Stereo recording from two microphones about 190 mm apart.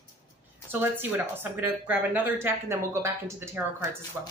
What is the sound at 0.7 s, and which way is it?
A woman's voice, 10° right (ahead or behind).